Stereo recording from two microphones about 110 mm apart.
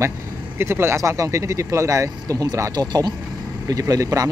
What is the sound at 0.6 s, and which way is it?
Speech, 20° right (ahead or behind).